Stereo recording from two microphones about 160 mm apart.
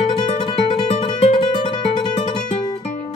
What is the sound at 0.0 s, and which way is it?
Music, 35° left (ahead or behind).